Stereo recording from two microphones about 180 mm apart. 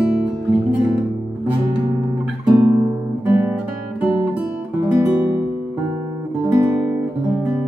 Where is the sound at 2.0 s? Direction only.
20° right (ahead or behind).